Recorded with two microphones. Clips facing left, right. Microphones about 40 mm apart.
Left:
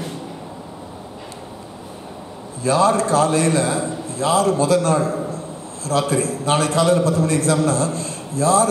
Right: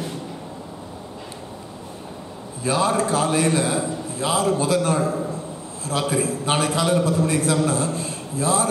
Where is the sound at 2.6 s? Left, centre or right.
Centre.